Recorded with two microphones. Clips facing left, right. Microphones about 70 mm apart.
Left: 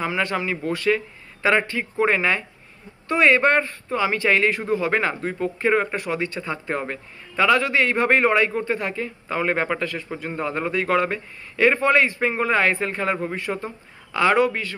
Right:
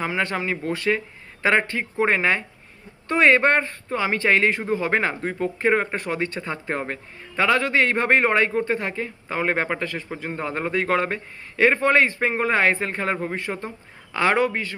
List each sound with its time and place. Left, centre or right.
0.0 s a man's voice: right